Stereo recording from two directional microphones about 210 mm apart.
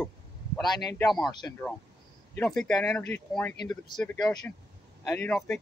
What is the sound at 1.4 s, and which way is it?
Speech, 10° left (ahead or behind).